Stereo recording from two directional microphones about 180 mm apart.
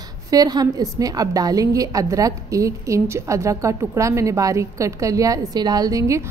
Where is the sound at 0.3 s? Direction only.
20° right (ahead or behind).